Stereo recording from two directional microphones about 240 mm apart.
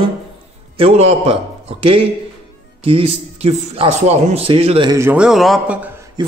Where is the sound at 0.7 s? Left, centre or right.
Right; by 5.9 s centre.